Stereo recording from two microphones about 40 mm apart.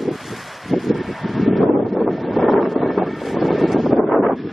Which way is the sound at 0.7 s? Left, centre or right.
Centre.